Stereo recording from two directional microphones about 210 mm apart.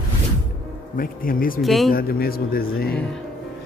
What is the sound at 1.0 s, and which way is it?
Speech, 40° left (ahead or behind).